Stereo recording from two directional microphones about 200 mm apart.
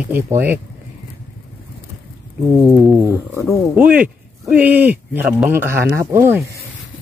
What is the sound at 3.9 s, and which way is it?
Speech, 5° right (ahead or behind).